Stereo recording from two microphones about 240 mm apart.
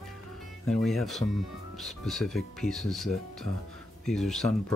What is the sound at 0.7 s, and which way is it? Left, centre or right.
Speech, centre.